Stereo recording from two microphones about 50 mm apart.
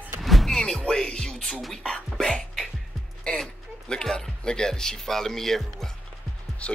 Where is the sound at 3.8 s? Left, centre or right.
Centre.